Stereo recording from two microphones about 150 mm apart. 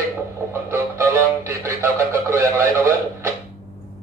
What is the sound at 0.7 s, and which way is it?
Speech, 15° right (ahead or behind).